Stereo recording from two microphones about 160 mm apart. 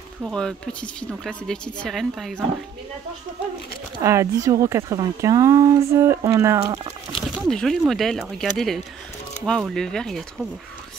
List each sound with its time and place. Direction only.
0.2 s speech: 5° left (ahead or behind)
4.0 s speech: 20° right (ahead or behind)
7.2 s speech: centre (ahead or behind)